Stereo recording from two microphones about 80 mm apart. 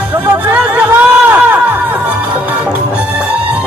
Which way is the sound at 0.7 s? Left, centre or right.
Right.